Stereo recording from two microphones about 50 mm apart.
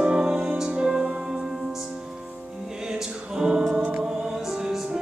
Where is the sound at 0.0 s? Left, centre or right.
Centre.